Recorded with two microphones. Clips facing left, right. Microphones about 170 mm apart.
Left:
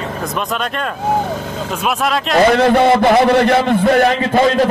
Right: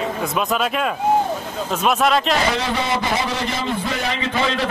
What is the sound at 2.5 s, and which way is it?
A man's voice, 55° left (ahead or behind).